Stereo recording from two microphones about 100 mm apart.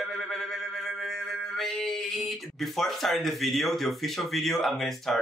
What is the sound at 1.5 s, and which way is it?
Speech, centre (ahead or behind).